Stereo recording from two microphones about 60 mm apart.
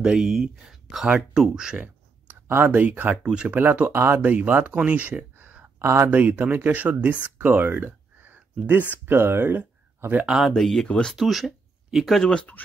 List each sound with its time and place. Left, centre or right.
0.0 s speech: centre
2.4 s speech: right
2.7 s speech: right
4.7 s a sound: right
5.8 s speech: right
6.0 s speech: right
10.5 s speech: centre
11.1 s speech: centre
12.2 s speech: centre